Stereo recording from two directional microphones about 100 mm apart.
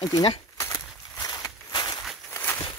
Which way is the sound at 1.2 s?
40° left (ahead or behind).